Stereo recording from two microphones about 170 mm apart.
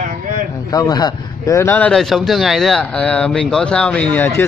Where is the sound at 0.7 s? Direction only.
25° left (ahead or behind).